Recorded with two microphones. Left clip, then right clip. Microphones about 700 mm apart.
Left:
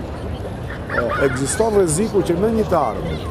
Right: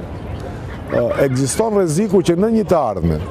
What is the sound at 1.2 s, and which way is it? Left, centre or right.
Speech, right.